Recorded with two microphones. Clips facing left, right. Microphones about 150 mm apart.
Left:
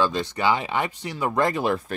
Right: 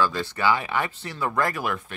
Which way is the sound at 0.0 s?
20° left (ahead or behind).